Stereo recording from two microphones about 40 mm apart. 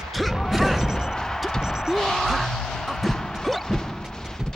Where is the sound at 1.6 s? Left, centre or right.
Centre.